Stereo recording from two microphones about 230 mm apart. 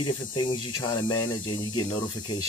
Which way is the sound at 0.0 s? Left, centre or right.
Left.